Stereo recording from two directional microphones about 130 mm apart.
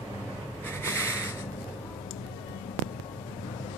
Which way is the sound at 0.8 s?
20° left (ahead or behind).